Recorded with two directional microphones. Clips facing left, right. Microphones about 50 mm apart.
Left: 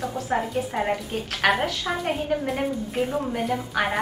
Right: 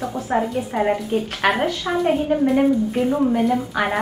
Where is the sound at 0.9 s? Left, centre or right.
Centre.